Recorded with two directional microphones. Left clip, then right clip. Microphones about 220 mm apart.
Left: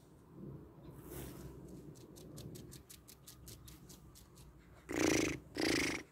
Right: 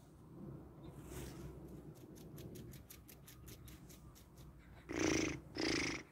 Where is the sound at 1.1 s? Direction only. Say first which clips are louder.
Left 2 dB; centre (ahead or behind).